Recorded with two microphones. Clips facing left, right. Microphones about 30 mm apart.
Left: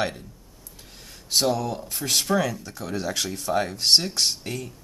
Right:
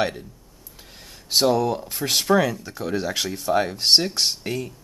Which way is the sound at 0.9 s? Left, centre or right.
Centre.